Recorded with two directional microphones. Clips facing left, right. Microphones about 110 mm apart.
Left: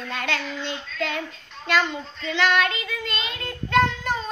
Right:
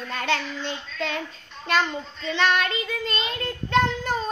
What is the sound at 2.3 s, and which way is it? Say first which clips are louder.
Child singing: left 1 dB; 35° right (ahead or behind).